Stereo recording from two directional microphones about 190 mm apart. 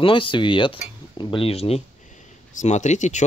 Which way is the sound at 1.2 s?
25° left (ahead or behind).